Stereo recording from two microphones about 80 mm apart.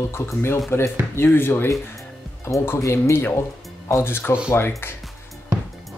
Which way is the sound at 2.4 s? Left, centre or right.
Left.